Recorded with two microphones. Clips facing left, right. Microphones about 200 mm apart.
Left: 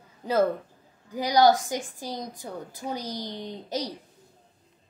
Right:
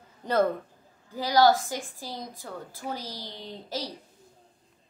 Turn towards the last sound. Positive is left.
turn(degrees=20)  # may be behind; listen again after turning